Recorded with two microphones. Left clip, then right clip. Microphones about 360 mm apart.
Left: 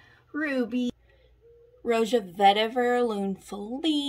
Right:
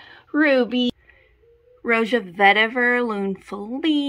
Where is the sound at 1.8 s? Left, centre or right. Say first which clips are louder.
Right 4 dB; right.